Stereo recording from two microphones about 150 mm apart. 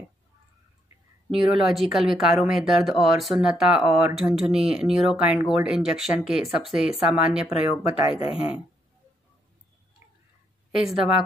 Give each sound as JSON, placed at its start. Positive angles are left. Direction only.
{"t": 1.7, "sound": "speech", "side_deg": 0}
{"t": 8.1, "sound": "speech", "side_deg": 35}
{"t": 10.9, "sound": "speech", "side_deg": -5}